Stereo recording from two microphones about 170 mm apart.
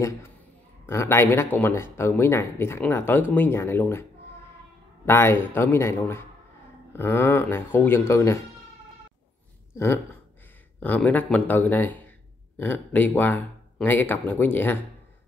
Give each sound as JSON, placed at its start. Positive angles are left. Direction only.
{"t": 0.0, "sound": "a man's voice", "side_deg": 15}
{"t": 10.8, "sound": "speech", "side_deg": 10}